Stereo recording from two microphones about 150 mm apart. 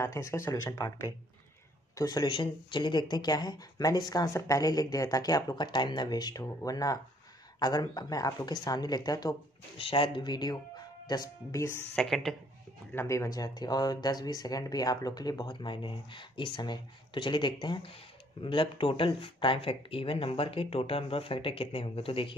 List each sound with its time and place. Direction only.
0.0 s speech: 20° left (ahead or behind)
9.8 s speech: 35° left (ahead or behind); by 11.8 s 20° left (ahead or behind)
11.9 s a woman's voice: centre (ahead or behind)
12.9 s speech: 20° left (ahead or behind); by 22.3 s 35° left (ahead or behind)